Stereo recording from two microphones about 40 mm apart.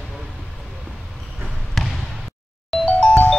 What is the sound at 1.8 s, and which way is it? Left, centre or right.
Trickle, centre.